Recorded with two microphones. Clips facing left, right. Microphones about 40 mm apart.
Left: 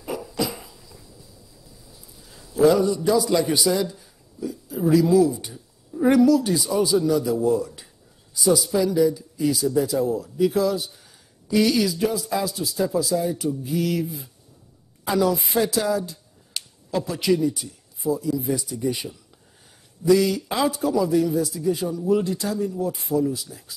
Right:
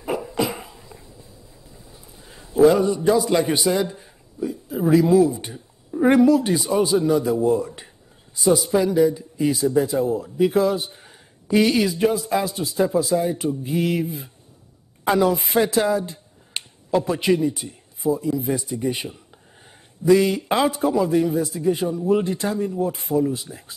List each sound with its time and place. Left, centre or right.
0.0 s dog: right
8.4 s a man's voice: right